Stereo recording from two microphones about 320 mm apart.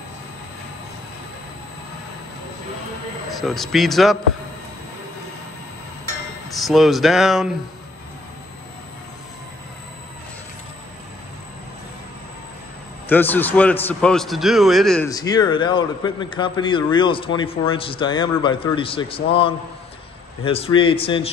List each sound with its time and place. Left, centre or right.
3.3 s a man's voice: centre
6.5 s a man's voice: centre
13.1 s a man's voice: centre
15.0 s a man's voice: centre